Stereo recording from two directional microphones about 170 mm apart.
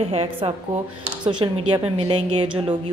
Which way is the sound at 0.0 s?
35° right (ahead or behind).